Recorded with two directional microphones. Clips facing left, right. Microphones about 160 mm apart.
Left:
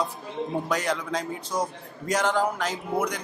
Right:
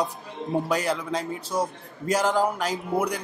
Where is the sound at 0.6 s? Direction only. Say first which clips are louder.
Right 1 dB; 5° right (ahead or behind).